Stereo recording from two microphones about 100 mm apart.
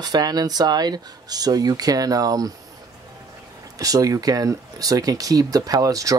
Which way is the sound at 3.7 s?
35° right (ahead or behind).